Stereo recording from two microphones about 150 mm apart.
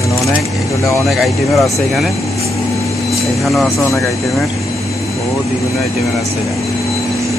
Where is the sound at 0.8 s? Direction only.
Centre (ahead or behind).